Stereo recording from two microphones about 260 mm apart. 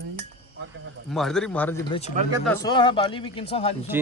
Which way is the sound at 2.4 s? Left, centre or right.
Centre.